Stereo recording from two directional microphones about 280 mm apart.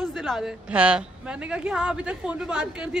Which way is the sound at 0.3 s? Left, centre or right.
Centre.